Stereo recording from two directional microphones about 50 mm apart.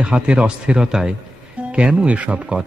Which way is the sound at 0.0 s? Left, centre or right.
Right.